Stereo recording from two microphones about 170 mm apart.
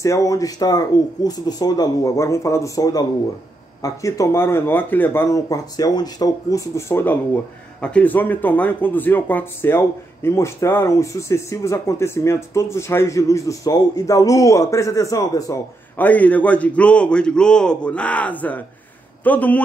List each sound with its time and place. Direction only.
0.0 s speech: 20° left (ahead or behind)